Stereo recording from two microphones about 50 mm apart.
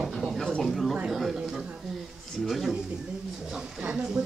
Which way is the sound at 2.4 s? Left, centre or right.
Centre.